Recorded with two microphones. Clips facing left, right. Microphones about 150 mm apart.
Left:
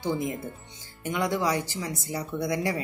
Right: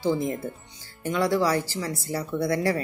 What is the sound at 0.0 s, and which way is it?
A woman's voice, 20° left (ahead or behind).